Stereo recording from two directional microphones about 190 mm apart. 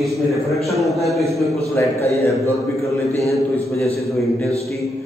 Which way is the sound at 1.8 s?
10° left (ahead or behind).